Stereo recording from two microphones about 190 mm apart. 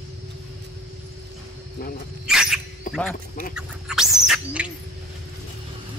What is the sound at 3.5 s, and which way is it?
Bird, centre (ahead or behind).